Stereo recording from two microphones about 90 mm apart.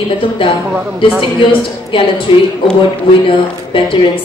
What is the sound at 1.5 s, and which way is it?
Speech, 75° left (ahead or behind).